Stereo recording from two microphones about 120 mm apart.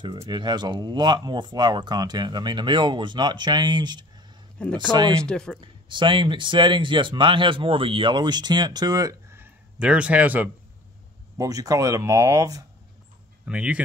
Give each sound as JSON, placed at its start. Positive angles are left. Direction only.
{"t": 0.3, "sound": "speech", "side_deg": -35}
{"t": 4.6, "sound": "speech", "side_deg": 10}
{"t": 5.6, "sound": "speech", "side_deg": -40}
{"t": 9.4, "sound": "speech", "side_deg": -10}
{"t": 11.3, "sound": "speech", "side_deg": -30}
{"t": 13.5, "sound": "speech", "side_deg": -10}